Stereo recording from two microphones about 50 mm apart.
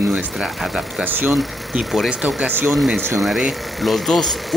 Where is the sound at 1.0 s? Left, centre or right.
Right.